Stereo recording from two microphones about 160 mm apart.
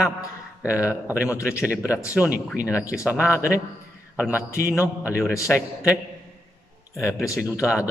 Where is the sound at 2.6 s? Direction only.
20° left (ahead or behind).